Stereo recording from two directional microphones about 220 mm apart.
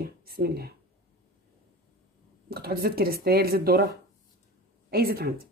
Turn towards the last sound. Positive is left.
turn(degrees=-45)  # may be behind; listen again after turning